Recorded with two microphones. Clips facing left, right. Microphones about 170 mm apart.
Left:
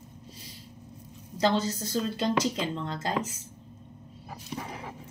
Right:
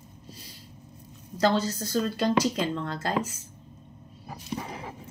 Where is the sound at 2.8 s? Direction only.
20° left (ahead or behind).